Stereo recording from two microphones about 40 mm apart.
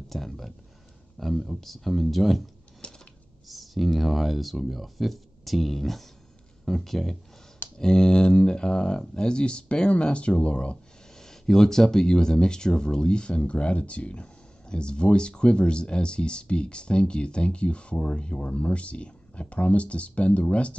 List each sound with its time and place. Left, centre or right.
0.1 s speech: centre
2.8 s a sound: left
3.4 s speech: centre
7.8 s speech: centre
11.1 s speech: centre; by 20.7 s left